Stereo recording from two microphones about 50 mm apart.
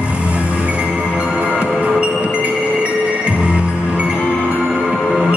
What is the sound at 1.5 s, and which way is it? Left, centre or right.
Music, right.